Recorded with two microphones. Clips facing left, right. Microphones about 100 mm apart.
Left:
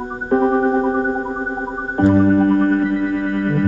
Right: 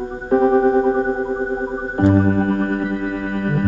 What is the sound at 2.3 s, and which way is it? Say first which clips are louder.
Music: left 5 dB; 40° left (ahead or behind).